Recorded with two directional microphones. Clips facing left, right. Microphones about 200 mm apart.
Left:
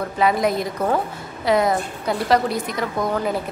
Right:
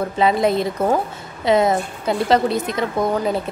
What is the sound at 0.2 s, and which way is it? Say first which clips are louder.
A woman's voice: right 2 dB; 25° right (ahead or behind).